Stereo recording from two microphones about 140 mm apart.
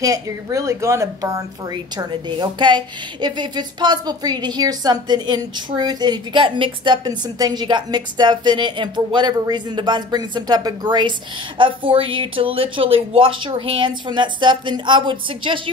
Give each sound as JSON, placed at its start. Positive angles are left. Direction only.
{"t": 0.0, "sound": "a woman's voice", "side_deg": -25}
{"t": 1.7, "sound": "a woman's voice", "side_deg": -30}